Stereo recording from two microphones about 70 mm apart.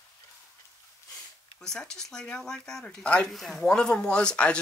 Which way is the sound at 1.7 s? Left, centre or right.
Centre.